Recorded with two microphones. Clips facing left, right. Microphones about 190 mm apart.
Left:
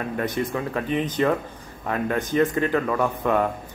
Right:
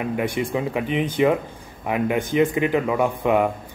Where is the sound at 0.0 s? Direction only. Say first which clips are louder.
Right 2 dB; 10° right (ahead or behind).